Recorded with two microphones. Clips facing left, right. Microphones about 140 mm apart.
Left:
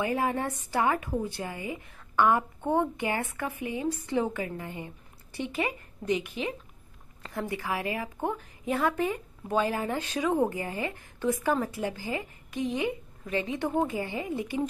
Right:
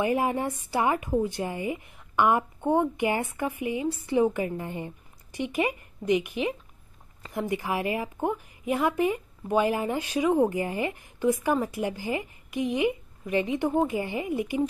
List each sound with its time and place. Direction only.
0.0 s a woman's voice: 15° right (ahead or behind)